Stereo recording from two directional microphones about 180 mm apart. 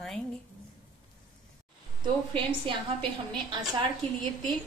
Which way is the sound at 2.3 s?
25° right (ahead or behind).